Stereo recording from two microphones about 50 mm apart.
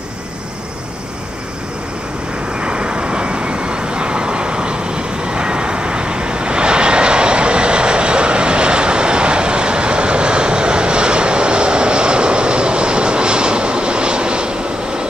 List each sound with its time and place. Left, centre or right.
2.6 s vehicle: centre